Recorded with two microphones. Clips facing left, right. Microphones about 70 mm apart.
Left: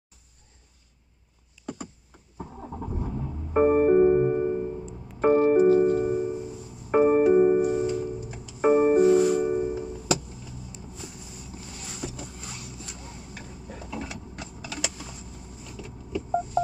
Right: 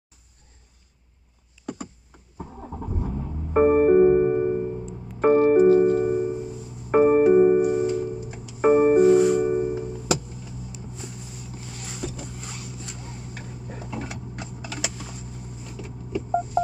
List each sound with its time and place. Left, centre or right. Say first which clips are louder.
2.3 s vehicle: right 1 dB; centre
3.5 s music: right 3 dB; right
12.9 s vehicle: right 3 dB; right
13.5 s a sound: right 2 dB; right
15.6 s vehicle: right 1 dB; right
16.6 s telephone dialing: right 2 dB; right